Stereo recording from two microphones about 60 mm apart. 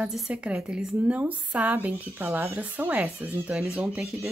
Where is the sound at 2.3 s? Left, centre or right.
Right.